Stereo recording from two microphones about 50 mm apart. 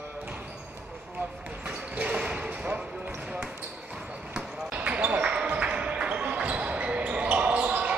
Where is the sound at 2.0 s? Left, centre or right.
Right.